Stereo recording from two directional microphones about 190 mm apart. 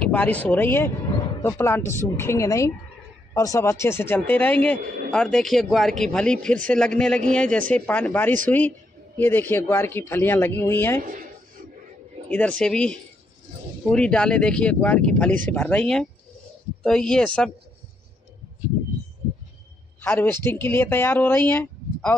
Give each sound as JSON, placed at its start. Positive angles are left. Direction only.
{"t": 0.0, "sound": "a man's voice", "side_deg": 10}
{"t": 11.0, "sound": "speech", "side_deg": -45}
{"t": 12.3, "sound": "a man's voice", "side_deg": 5}
{"t": 20.0, "sound": "speech", "side_deg": 10}